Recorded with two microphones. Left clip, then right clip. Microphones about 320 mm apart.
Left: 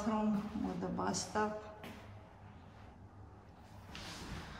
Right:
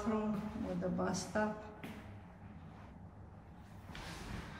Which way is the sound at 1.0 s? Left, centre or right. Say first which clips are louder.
Left 2 dB; centre.